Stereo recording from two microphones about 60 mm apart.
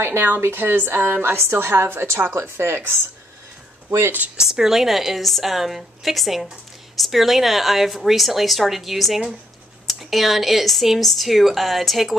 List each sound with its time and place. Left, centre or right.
0.0 s a woman's voice: right
4.4 s a woman's voice: centre